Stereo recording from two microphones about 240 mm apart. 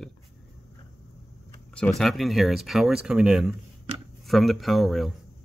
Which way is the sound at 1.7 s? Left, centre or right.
Centre.